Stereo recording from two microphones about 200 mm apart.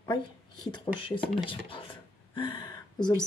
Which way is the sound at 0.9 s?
25° left (ahead or behind).